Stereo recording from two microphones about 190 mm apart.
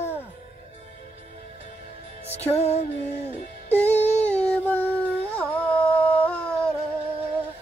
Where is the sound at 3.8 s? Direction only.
35° left (ahead or behind).